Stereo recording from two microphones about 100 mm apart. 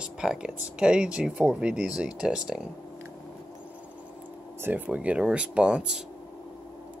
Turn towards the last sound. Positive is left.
turn(degrees=-10)  # may be behind; listen again after turning